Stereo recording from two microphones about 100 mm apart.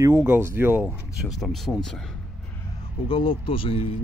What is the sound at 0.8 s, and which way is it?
Speech, centre (ahead or behind).